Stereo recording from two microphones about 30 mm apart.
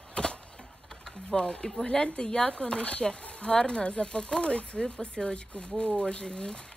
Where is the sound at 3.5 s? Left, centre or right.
Left.